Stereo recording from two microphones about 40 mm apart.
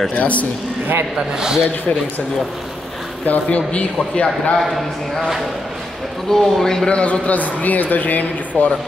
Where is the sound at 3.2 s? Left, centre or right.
Left.